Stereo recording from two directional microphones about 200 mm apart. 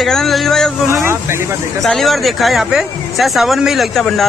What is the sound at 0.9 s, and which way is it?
Speech, 10° right (ahead or behind).